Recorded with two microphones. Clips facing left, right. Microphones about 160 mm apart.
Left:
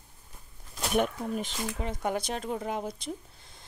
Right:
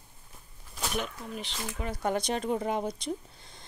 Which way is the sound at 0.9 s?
50° left (ahead or behind).